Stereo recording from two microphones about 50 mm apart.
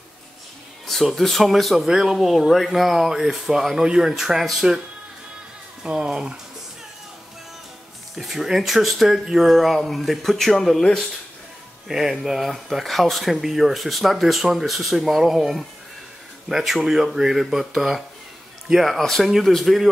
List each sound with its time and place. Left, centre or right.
0.8 s speech: centre
5.9 s speech: centre
8.2 s speech: centre
11.9 s speech: centre